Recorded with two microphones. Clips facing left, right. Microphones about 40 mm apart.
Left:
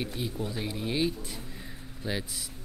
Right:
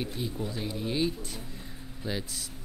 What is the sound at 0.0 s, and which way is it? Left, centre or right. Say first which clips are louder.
Speech: even; centre.